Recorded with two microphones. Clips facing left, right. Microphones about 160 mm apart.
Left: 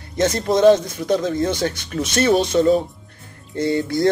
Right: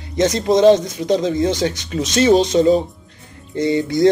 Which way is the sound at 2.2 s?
20° right (ahead or behind).